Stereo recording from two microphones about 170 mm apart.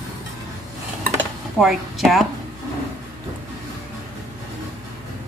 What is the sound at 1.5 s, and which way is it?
Speech, centre (ahead or behind).